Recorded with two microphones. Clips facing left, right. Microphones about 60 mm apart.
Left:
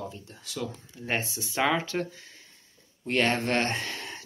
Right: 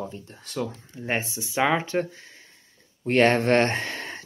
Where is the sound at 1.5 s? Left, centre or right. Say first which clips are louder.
Right 3 dB; centre.